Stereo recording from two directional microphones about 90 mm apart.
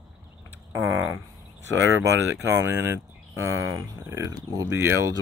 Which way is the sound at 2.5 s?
30° right (ahead or behind).